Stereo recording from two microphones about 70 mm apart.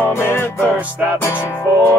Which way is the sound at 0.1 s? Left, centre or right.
Left.